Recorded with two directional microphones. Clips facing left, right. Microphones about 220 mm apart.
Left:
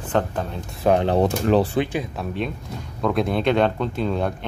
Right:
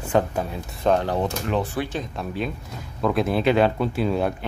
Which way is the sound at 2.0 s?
Centre (ahead or behind).